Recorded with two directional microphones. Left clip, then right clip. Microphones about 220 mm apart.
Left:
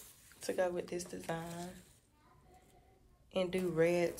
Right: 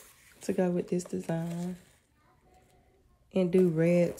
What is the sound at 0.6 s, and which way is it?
Speech, 25° right (ahead or behind).